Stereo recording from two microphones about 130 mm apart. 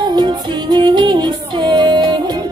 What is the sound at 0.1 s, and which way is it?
Music, 35° right (ahead or behind).